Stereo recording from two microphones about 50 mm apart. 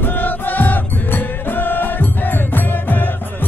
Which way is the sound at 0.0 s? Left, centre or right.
Left.